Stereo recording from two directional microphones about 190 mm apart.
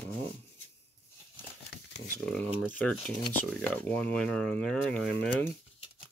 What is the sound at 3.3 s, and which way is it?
Speech, 5° left (ahead or behind).